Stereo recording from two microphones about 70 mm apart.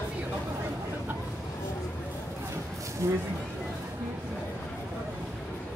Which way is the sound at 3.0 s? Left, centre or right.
Right.